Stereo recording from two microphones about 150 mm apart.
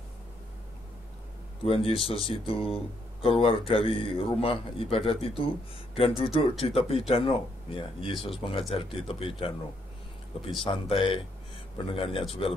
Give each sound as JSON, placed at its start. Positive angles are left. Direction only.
{"t": 1.6, "sound": "speech", "side_deg": 40}
{"t": 10.6, "sound": "speech", "side_deg": 35}